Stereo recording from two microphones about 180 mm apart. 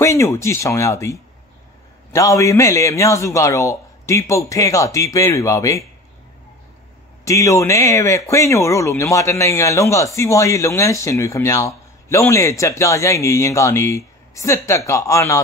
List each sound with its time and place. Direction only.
0.0 s speech: 15° left (ahead or behind)
7.2 s speech: 15° left (ahead or behind)